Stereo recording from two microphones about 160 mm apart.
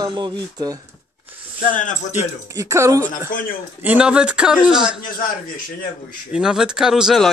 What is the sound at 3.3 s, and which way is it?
Speech, 60° left (ahead or behind).